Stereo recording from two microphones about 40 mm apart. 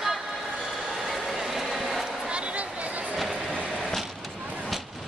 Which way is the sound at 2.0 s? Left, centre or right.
Right.